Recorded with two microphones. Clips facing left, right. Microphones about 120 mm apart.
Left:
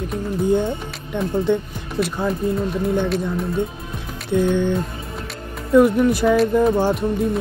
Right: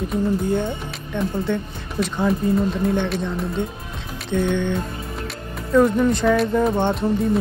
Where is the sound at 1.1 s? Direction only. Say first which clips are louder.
Left 3 dB; 20° left (ahead or behind).